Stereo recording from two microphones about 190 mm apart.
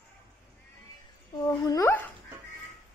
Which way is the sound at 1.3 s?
20° left (ahead or behind).